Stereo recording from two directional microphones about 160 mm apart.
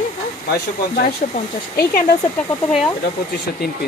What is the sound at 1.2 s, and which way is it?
Speech, 60° left (ahead or behind).